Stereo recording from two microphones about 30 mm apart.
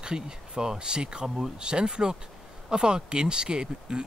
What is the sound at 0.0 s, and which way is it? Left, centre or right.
Speech, right.